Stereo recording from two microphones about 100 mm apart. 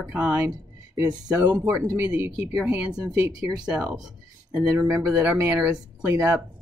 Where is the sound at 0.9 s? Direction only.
40° right (ahead or behind).